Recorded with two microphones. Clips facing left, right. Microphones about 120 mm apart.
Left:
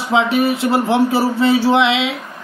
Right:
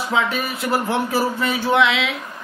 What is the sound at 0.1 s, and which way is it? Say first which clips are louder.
A man's voice: left 8 dB; 25° left (ahead or behind).